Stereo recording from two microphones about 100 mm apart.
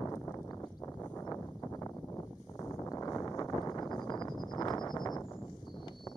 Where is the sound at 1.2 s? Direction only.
35° left (ahead or behind).